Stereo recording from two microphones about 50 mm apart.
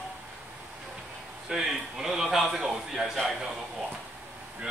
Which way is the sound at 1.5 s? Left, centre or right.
Centre.